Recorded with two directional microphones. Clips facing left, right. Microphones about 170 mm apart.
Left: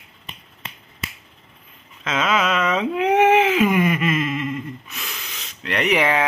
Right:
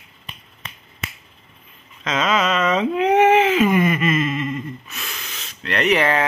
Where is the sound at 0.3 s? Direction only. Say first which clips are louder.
Even; 30° left (ahead or behind).